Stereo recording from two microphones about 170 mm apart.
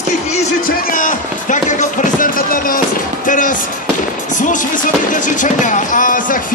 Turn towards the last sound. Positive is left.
turn(degrees=50)  # may be behind; listen again after turning